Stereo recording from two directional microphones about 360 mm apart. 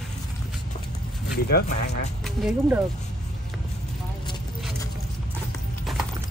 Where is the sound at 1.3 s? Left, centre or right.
Left.